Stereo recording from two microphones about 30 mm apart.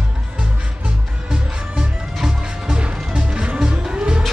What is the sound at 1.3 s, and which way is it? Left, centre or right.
Music, right.